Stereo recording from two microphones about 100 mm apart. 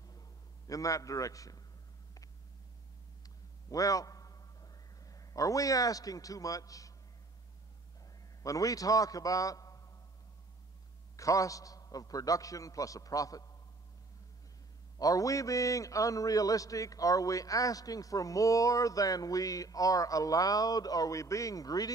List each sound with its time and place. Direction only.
0.7 s a man's voice: 35° left (ahead or behind)
3.7 s a man's voice: 35° left (ahead or behind)
8.4 s a man's voice: 35° left (ahead or behind)
11.1 s a man's voice: 35° left (ahead or behind)
15.0 s a man's voice: 35° left (ahead or behind)